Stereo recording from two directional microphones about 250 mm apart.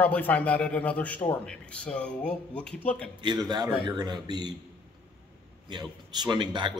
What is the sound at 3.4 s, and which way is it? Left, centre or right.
Speech, centre.